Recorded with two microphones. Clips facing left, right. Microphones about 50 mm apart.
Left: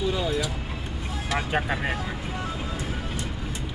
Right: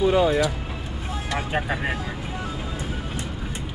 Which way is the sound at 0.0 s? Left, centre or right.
Right.